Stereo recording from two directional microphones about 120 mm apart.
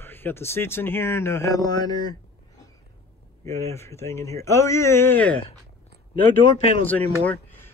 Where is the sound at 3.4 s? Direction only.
25° left (ahead or behind).